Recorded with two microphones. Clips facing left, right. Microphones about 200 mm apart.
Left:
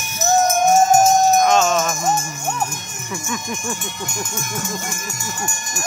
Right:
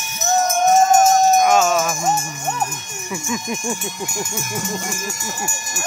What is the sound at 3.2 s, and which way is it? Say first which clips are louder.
Speech: right 3 dB; 15° right (ahead or behind).